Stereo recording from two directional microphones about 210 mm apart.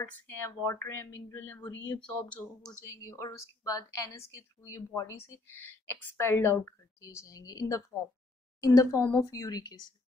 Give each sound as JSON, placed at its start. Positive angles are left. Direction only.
{"t": 0.0, "sound": "speech", "side_deg": 10}